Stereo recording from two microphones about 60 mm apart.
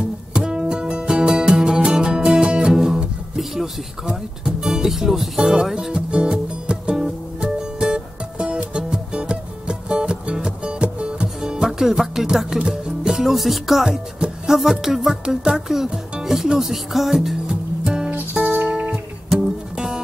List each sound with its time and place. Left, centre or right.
0.3 s music: centre
12.5 s speech: centre
18.1 s music: right